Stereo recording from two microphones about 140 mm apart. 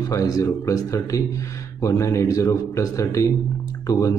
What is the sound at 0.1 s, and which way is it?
A man's voice, 25° left (ahead or behind).